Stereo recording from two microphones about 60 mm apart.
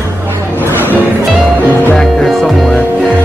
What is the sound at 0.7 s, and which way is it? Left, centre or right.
Music, right.